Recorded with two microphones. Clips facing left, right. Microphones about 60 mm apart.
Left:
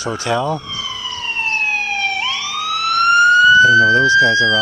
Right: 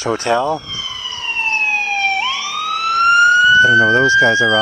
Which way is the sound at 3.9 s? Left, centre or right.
Right.